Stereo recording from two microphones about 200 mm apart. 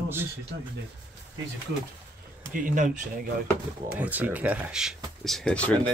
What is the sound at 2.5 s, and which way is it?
Speech, 40° right (ahead or behind).